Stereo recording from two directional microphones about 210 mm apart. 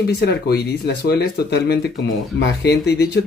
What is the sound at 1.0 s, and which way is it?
Speech, 50° left (ahead or behind).